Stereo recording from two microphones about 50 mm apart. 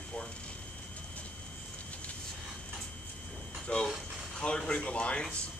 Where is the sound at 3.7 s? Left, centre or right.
Left.